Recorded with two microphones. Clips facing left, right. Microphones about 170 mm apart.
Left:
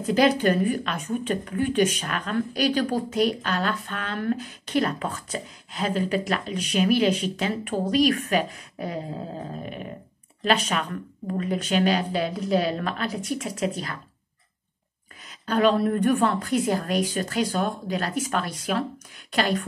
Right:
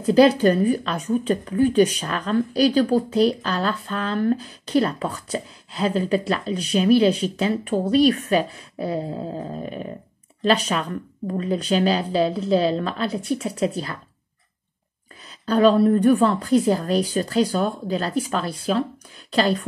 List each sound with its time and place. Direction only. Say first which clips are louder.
0.0 s speech: right 5 dB; 35° right (ahead or behind)
10.4 s speech: right 3 dB; 35° right (ahead or behind)
15.2 s speech: right 4 dB; 35° right (ahead or behind)